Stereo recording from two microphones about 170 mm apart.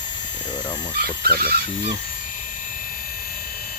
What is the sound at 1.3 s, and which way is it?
Speech, 60° right (ahead or behind).